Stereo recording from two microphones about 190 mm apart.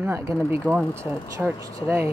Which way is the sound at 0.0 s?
15° right (ahead or behind).